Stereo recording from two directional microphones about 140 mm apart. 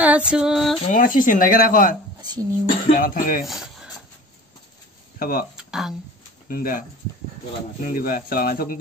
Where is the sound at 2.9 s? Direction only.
80° left.